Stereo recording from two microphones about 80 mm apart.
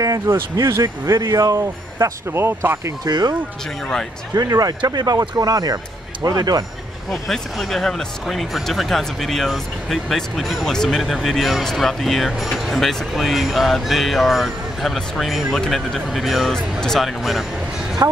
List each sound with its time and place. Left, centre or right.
0.3 s speech: right
2.3 s speech: right
3.1 s speech: right
4.4 s speech: right
7.1 s speech: centre